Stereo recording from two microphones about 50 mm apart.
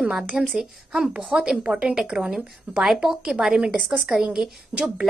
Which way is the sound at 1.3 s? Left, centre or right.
Centre.